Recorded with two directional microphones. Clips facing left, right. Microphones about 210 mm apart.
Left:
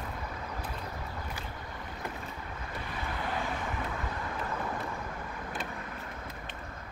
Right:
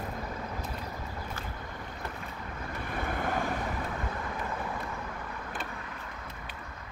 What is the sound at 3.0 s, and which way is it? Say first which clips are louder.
Vehicle: right 4 dB; 45° right (ahead or behind).